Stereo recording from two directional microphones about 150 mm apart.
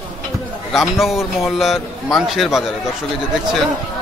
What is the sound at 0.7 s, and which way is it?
A man's voice, centre (ahead or behind).